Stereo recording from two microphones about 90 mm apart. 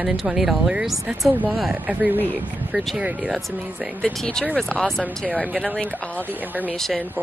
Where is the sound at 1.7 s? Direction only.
15° right (ahead or behind).